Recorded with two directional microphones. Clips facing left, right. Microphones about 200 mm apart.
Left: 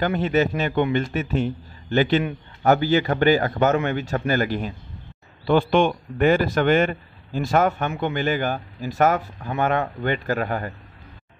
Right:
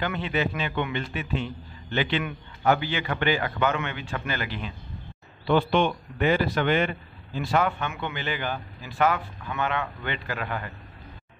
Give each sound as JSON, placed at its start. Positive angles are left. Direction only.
{"t": 0.0, "sound": "a man's voice", "side_deg": 45}